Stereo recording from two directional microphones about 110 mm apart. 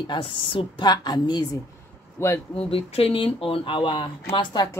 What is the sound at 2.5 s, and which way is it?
Speech, 60° left (ahead or behind).